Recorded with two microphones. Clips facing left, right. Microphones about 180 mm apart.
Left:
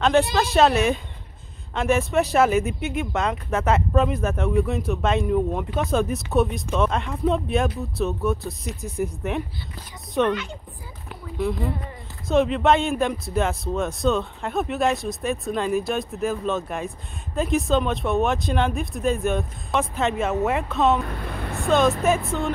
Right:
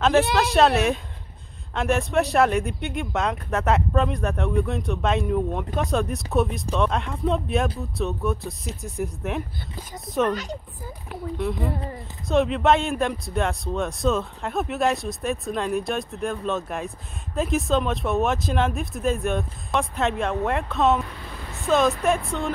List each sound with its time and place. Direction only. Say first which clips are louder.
0.0 s speech: even; centre (ahead or behind)
10.3 s a woman's voice: even; 40° right (ahead or behind)
11.1 s speech: left 1 dB; centre (ahead or behind)
21.1 s speech: left 7 dB; 60° left (ahead or behind)
21.6 s speech: left 1 dB; centre (ahead or behind)